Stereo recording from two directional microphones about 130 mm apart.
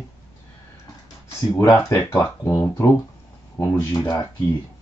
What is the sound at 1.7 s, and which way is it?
Speech, 15° left (ahead or behind).